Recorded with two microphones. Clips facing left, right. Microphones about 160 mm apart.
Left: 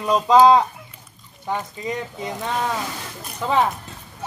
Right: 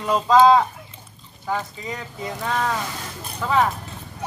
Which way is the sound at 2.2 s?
20° left (ahead or behind).